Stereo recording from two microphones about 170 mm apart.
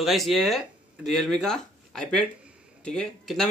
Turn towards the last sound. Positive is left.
turn(degrees=5)  # may be behind; listen again after turning